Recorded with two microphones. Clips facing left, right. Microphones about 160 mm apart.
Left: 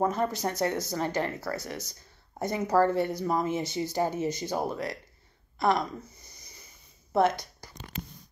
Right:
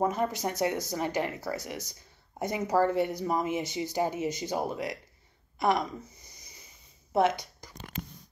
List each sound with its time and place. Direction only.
0.0 s speech: 15° right (ahead or behind)
5.6 s a sound: 15° right (ahead or behind)
7.1 s speech: 10° right (ahead or behind)